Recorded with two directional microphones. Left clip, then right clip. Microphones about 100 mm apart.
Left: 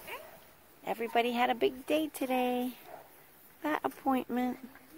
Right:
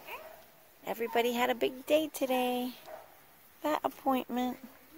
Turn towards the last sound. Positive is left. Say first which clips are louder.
# even
turn(degrees=-35)  # may be behind; listen again after turning